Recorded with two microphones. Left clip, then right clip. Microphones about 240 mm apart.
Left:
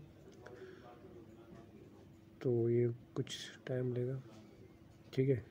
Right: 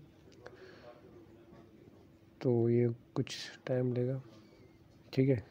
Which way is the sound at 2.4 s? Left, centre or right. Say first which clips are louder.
Right 3 dB; right.